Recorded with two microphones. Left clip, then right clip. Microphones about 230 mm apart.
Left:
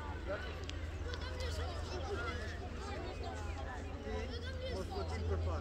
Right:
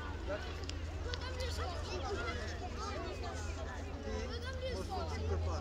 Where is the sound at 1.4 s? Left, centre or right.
Right.